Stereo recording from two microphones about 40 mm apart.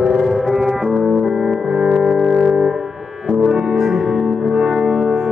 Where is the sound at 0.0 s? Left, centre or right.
Centre.